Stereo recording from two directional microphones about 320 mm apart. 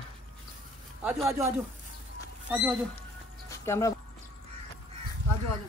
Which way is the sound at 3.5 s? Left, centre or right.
Centre.